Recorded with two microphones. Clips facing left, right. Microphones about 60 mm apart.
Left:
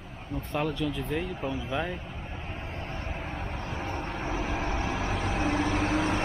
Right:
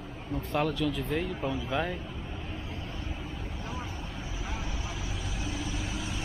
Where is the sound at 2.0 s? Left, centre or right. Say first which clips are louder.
Even; left.